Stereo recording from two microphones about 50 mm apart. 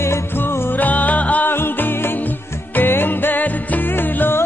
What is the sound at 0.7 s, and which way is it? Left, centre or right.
Music, left.